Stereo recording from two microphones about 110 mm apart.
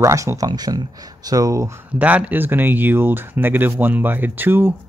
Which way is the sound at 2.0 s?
15° right (ahead or behind).